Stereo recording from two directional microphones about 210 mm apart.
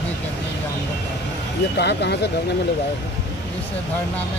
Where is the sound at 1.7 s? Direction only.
50° left (ahead or behind).